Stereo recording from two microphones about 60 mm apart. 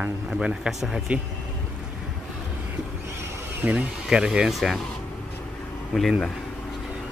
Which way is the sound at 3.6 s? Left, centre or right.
Right.